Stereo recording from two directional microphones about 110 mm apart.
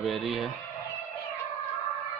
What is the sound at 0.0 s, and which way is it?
Speech, centre (ahead or behind).